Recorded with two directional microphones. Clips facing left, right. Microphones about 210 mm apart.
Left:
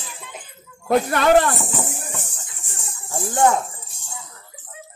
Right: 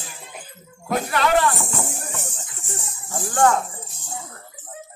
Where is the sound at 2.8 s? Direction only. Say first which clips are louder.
Left 4 dB; 25° left (ahead or behind).